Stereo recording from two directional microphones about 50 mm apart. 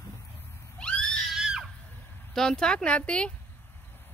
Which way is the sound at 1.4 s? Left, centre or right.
Centre.